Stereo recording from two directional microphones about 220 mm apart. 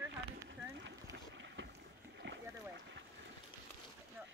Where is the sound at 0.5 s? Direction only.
55° right (ahead or behind).